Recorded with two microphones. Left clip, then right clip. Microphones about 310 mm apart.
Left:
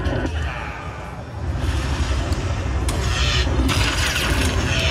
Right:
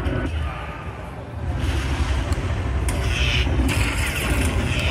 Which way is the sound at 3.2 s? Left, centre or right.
Centre.